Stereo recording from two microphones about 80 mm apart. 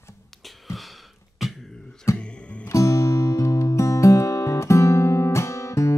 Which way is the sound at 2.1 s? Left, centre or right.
Left.